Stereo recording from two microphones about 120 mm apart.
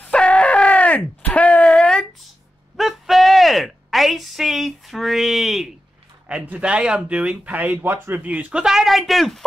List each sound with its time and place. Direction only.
0.0 s groan: 10° left (ahead or behind)
2.8 s a sound: centre (ahead or behind)
6.2 s speech: 10° right (ahead or behind)